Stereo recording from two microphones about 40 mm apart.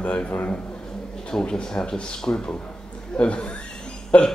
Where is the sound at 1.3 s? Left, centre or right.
Centre.